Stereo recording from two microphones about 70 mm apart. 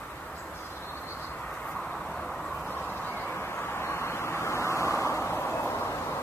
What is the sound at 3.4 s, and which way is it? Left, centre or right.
Vehicle, left.